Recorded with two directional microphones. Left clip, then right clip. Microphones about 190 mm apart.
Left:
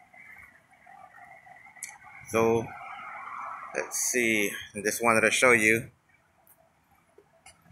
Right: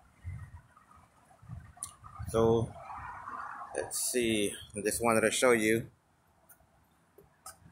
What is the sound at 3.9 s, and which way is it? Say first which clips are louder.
Speech: left 6 dB; 20° right (ahead or behind).